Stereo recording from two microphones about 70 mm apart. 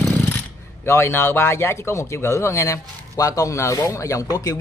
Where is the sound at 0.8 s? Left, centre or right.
Left.